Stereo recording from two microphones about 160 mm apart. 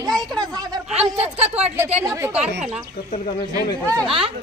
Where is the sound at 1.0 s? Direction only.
40° right (ahead or behind).